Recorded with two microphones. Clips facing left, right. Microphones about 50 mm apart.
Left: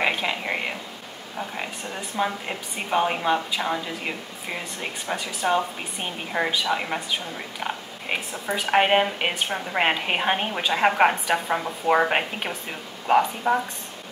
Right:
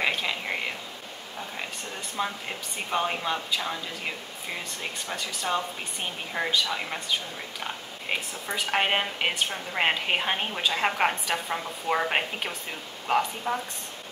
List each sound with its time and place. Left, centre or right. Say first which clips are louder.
0.0 s a sound: left 3 dB; left
1.6 s a woman's voice: left 4 dB; centre
5.0 s a woman's voice: left 7 dB; centre
13.5 s a woman's voice: left 7 dB; left